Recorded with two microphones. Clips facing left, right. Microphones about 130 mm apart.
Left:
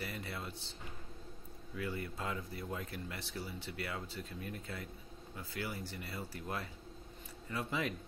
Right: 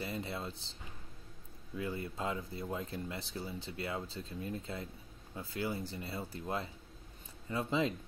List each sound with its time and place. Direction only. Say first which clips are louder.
0.0 s music: right 4 dB; 25° right (ahead or behind)
1.8 s speech: right 2 dB; 25° right (ahead or behind)